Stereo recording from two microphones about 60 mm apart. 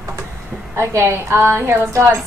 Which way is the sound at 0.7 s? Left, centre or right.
Right.